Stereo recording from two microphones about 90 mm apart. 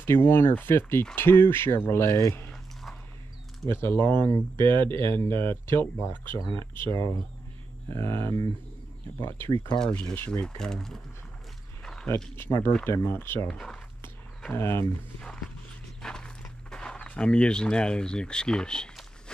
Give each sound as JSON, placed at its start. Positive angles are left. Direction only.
{"t": 0.0, "sound": "speech", "side_deg": 25}
{"t": 3.6, "sound": "speech", "side_deg": 25}
{"t": 10.4, "sound": "speech", "side_deg": 5}
{"t": 11.8, "sound": "a sound", "side_deg": 5}
{"t": 12.4, "sound": "speech", "side_deg": 25}
{"t": 13.5, "sound": "speech", "side_deg": 10}
{"t": 14.5, "sound": "speech", "side_deg": 25}
{"t": 16.0, "sound": "walk", "side_deg": 5}